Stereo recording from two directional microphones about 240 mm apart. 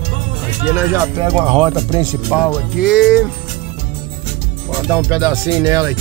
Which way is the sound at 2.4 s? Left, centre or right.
Centre.